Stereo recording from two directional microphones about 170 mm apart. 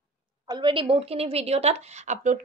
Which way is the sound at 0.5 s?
30° right (ahead or behind).